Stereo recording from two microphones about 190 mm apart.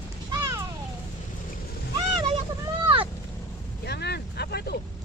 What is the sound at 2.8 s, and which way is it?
Vehicle, 30° right (ahead or behind).